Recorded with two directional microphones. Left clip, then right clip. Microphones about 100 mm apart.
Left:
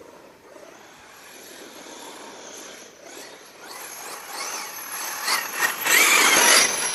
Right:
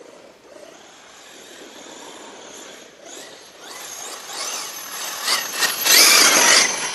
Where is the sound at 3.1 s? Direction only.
30° right (ahead or behind); by 6.3 s 90° right.